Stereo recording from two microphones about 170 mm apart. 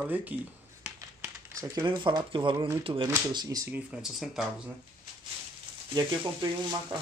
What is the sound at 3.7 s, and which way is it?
Speech, 5° right (ahead or behind).